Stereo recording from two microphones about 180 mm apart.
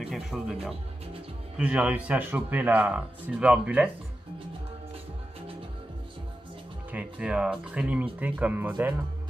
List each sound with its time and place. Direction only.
0.0 s speech: centre (ahead or behind)
1.6 s speech: 5° right (ahead or behind)
6.9 s speech: 5° right (ahead or behind)